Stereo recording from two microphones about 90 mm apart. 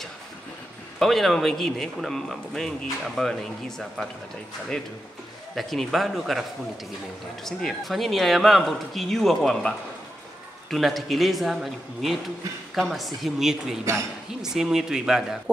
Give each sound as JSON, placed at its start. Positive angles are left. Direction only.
{"t": 0.9, "sound": "a man's voice", "side_deg": 0}
{"t": 5.6, "sound": "a man's voice", "side_deg": 0}
{"t": 7.4, "sound": "a man's voice", "side_deg": 0}